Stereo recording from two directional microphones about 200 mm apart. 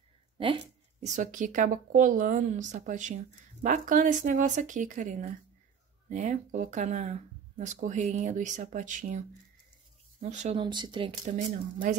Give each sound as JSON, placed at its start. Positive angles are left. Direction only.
{"t": 1.0, "sound": "speech", "side_deg": -40}
{"t": 10.2, "sound": "speech", "side_deg": -35}
{"t": 10.6, "sound": "speech", "side_deg": -20}
{"t": 11.2, "sound": "speech", "side_deg": -35}